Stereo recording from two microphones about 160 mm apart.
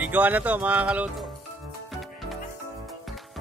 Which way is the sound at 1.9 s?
Centre (ahead or behind).